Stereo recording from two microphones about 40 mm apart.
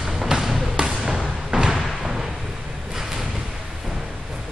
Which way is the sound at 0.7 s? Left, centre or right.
Centre.